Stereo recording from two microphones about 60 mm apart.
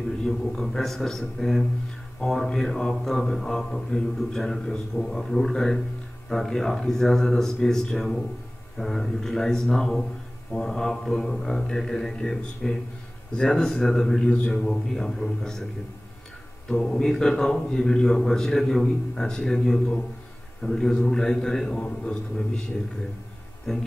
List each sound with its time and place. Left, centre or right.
0.2 s a man's voice: centre
2.2 s mantra: centre
16.6 s mantra: centre
23.7 s mantra: centre